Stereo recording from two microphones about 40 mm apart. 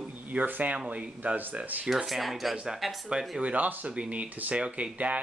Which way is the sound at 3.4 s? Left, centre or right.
Right.